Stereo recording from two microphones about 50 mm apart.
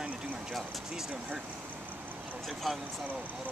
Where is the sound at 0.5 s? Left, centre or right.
Centre.